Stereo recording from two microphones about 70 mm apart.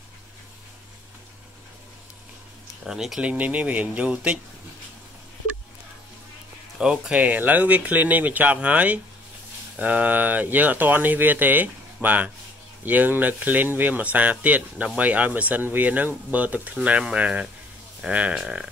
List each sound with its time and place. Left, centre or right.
2.8 s speech: centre
3.3 s speech: right
6.8 s speech: centre